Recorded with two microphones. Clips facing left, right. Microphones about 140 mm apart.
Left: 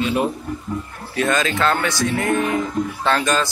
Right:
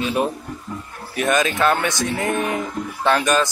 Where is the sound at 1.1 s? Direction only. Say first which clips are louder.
Even; 20° right (ahead or behind).